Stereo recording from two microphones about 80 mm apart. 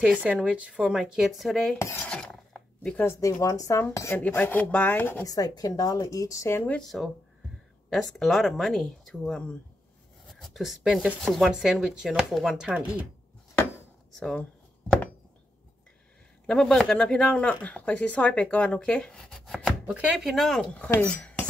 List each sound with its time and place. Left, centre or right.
0.0 s speech: centre
2.0 s mechanisms: centre
3.2 s a woman's voice: left
4.4 s speech: centre
5.2 s a woman's voice: left
6.8 s speech: centre
14.4 s a sound: centre
16.4 s speech: centre
21.0 s cutlery: centre